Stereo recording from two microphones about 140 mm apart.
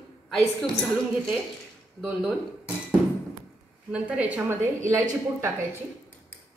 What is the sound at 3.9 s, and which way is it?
A woman's voice, 10° right (ahead or behind).